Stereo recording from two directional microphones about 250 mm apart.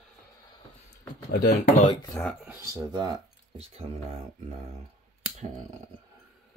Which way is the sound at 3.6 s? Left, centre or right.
Right.